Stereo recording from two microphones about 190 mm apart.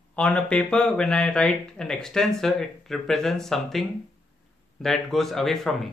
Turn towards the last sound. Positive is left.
turn(degrees=0)  # may be behind; listen again after turning